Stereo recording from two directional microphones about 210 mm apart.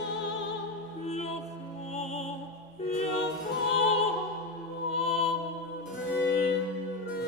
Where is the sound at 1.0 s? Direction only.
30° left (ahead or behind).